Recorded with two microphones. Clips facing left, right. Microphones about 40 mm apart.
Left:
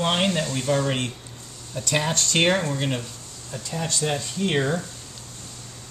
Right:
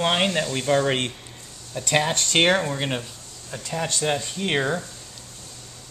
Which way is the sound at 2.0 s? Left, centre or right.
Right.